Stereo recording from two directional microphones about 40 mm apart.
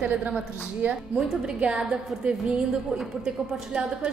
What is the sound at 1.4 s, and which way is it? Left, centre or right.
A woman's voice, right.